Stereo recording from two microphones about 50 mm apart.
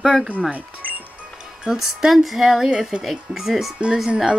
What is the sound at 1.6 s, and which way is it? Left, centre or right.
Speech, centre.